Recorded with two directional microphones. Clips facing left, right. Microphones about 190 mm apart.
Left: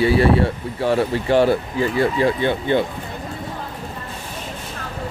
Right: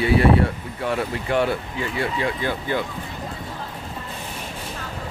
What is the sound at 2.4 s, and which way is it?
Speech, 25° left (ahead or behind).